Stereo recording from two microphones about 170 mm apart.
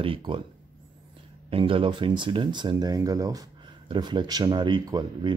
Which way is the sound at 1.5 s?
30° right (ahead or behind).